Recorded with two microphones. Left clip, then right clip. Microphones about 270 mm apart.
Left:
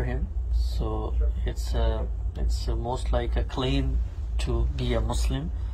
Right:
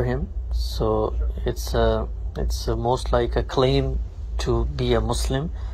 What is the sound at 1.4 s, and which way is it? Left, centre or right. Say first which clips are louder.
Speech: right 11 dB; centre.